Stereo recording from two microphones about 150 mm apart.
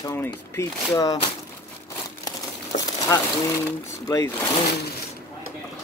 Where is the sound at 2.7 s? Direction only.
45° left (ahead or behind).